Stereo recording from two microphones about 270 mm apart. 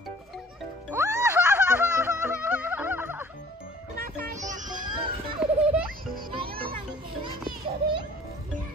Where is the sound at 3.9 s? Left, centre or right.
Right.